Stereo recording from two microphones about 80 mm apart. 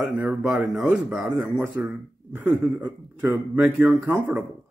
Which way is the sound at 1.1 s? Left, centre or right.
Centre.